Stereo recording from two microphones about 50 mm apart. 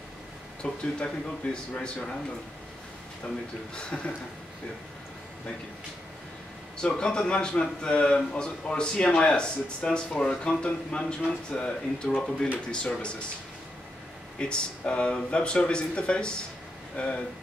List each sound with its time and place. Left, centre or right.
0.6 s a man's voice: centre
3.7 s a man's voice: centre
6.8 s a man's voice: centre
14.4 s a man's voice: left